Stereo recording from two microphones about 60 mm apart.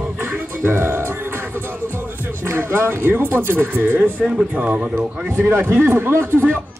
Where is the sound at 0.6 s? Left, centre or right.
Right.